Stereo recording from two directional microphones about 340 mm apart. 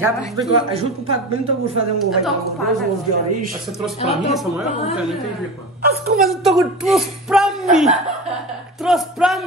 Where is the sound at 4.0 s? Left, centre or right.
Centre.